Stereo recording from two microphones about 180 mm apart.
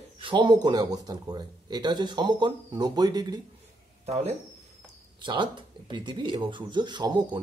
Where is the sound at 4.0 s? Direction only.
35° right (ahead or behind).